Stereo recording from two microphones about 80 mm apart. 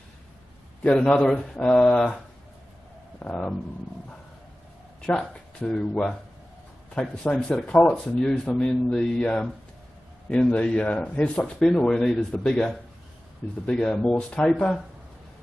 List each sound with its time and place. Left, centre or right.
0.9 s speech: centre
3.2 s speech: centre
5.7 s speech: centre